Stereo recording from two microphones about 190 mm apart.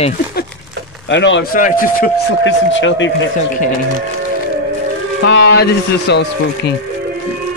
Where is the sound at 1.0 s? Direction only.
75° left (ahead or behind).